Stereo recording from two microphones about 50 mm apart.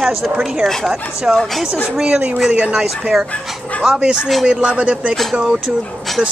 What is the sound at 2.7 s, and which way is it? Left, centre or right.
Speech, centre.